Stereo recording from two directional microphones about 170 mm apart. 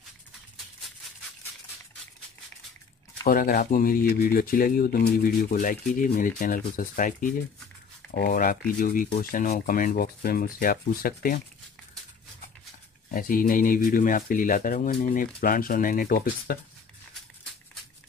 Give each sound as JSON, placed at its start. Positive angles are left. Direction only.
{"t": 3.3, "sound": "speech", "side_deg": 55}
{"t": 13.1, "sound": "speech", "side_deg": 55}